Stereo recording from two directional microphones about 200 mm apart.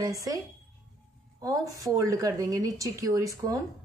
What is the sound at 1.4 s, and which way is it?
Speech, 15° right (ahead or behind).